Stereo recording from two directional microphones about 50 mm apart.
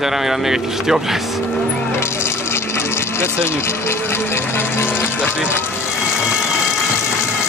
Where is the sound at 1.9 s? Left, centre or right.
Left.